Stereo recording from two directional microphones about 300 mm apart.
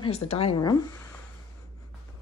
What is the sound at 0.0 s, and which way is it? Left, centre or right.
Speech, centre.